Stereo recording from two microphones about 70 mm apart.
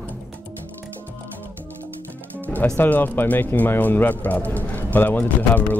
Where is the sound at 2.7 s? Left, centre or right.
Left.